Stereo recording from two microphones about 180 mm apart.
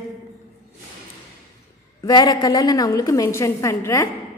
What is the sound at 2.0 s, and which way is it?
A woman's voice, 20° left (ahead or behind).